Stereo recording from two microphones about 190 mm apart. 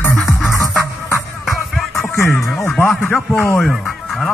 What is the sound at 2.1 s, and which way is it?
Music, 15° left (ahead or behind).